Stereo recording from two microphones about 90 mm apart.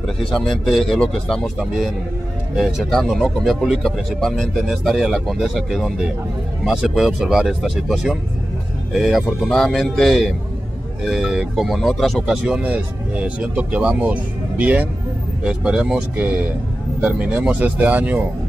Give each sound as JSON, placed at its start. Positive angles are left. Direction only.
{"t": 0.3, "sound": "speech", "side_deg": 5}
{"t": 2.5, "sound": "speech", "side_deg": 0}
{"t": 13.2, "sound": "speech", "side_deg": -15}
{"t": 17.0, "sound": "speech", "side_deg": -15}